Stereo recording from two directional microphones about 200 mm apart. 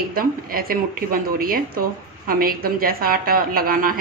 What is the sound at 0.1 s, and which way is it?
A woman's voice, 45° right (ahead or behind).